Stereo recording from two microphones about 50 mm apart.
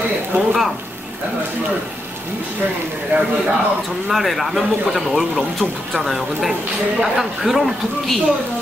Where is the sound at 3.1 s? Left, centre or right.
Right.